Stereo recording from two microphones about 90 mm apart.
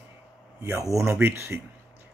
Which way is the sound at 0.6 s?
35° right (ahead or behind).